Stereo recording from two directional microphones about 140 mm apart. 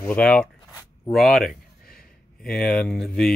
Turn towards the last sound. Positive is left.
turn(degrees=0)  # may be behind; listen again after turning